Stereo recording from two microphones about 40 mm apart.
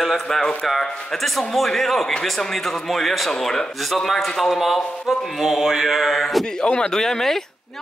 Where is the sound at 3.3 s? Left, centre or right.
Centre.